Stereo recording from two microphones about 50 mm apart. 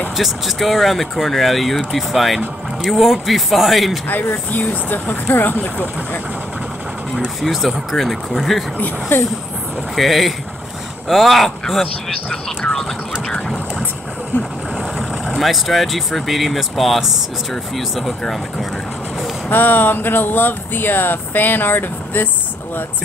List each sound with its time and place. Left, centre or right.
0.2 s speech: centre
4.1 s speech: left
7.9 s speech: centre
8.7 s speech: left
9.9 s speech: centre
15.3 s speech: centre
19.5 s speech: left